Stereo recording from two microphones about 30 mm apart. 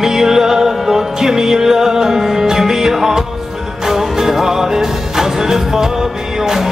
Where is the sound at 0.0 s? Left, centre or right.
Centre.